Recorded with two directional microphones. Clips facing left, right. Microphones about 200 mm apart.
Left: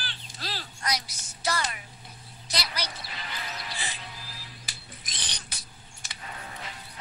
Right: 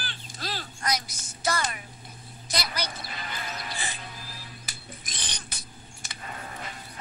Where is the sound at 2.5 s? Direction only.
50° right (ahead or behind).